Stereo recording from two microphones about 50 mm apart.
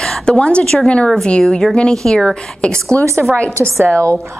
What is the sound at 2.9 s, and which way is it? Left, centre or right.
Speech, left.